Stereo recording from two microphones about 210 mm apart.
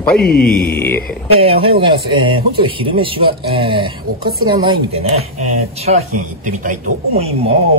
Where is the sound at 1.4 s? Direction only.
25° right (ahead or behind).